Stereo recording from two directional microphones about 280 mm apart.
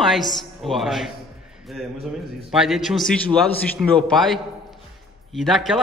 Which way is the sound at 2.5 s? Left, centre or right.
Centre.